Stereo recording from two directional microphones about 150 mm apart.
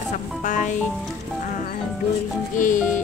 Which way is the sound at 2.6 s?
60° left (ahead or behind).